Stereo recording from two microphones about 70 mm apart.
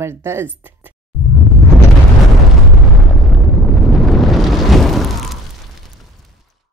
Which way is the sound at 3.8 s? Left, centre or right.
Centre.